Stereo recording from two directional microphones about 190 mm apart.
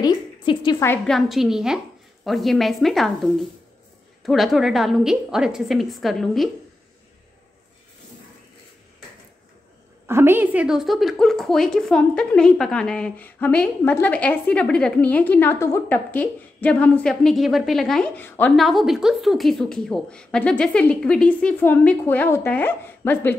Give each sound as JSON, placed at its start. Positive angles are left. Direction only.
{"t": 0.0, "sound": "music", "side_deg": 20}
{"t": 0.8, "sound": "a woman's voice", "side_deg": 5}
{"t": 4.2, "sound": "a woman's voice", "side_deg": 0}
{"t": 10.0, "sound": "a woman's voice", "side_deg": -10}